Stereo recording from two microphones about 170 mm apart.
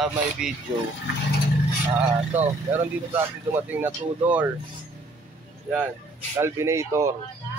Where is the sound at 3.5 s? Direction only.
10° right (ahead or behind).